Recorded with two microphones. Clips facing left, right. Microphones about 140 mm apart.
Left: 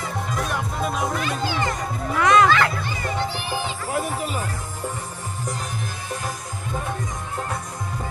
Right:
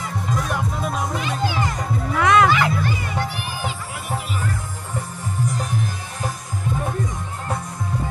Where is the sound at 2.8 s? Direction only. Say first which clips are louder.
Right 1 dB; 30° left (ahead or behind).